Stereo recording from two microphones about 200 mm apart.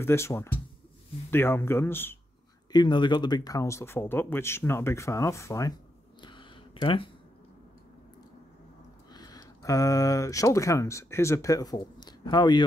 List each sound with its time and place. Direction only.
0.0 s speech: 15° left (ahead or behind)
2.7 s speech: 20° left (ahead or behind)
6.2 s a sound: 25° left (ahead or behind)
9.1 s speech: 20° left (ahead or behind)